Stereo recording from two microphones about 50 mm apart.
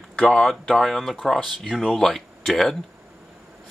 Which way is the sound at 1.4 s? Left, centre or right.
Centre.